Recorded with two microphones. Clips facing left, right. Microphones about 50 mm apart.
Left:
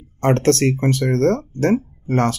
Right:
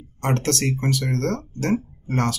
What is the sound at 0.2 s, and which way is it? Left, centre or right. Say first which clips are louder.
Speech: left 7 dB; left.